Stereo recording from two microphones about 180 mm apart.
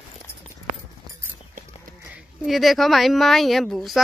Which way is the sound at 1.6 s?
45° right (ahead or behind).